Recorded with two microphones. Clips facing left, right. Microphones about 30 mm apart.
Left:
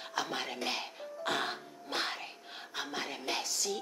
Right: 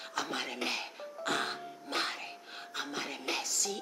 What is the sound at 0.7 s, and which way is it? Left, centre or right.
Music, centre.